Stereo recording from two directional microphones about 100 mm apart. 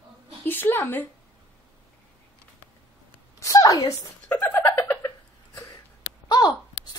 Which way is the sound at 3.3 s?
35° left (ahead or behind).